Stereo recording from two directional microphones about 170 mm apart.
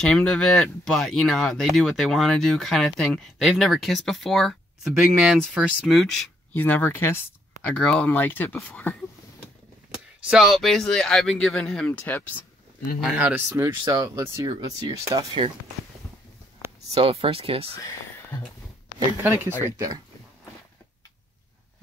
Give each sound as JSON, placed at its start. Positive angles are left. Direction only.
{"t": 0.0, "sound": "speech", "side_deg": 5}
{"t": 9.8, "sound": "speech", "side_deg": -5}
{"t": 13.0, "sound": "speech", "side_deg": -5}
{"t": 16.9, "sound": "speech", "side_deg": -35}
{"t": 17.7, "sound": "a sound", "side_deg": 15}
{"t": 19.2, "sound": "speech", "side_deg": -15}